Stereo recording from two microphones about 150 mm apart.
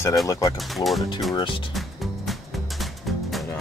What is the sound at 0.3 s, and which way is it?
Speech, 25° left (ahead or behind).